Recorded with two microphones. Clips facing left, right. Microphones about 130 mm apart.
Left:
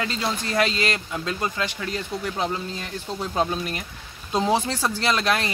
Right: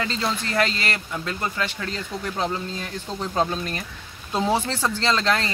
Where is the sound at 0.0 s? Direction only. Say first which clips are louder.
Right 1 dB; 15° left (ahead or behind).